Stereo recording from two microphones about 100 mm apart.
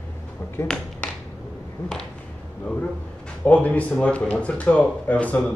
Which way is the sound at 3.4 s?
15° left (ahead or behind).